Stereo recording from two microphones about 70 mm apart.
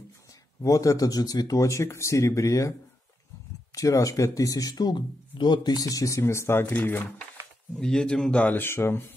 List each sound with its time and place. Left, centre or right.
0.6 s speech: left
3.7 s speech: left
6.6 s speech: left
7.7 s a man's voice: centre
8.5 s speech: left